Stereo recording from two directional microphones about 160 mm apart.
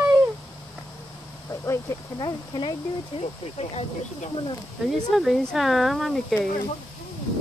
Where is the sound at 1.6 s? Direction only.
20° left (ahead or behind).